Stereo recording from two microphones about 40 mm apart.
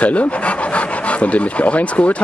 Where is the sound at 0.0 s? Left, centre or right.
Left.